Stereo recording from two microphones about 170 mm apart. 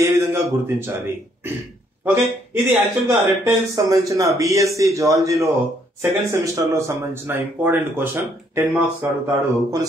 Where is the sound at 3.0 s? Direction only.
20° right (ahead or behind).